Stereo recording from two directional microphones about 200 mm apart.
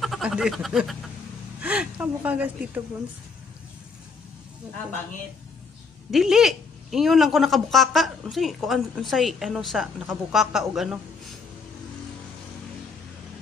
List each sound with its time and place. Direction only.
0.0 s speech: centre (ahead or behind)
6.1 s a woman's voice: centre (ahead or behind)